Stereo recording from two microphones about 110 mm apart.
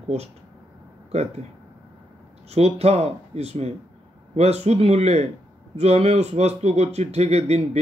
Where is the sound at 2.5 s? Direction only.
75° right (ahead or behind).